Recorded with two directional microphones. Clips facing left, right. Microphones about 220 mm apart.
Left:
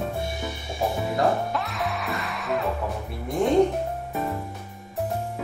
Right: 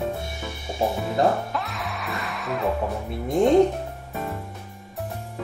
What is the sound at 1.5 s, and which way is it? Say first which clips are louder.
Music: left 2 dB; centre (ahead or behind).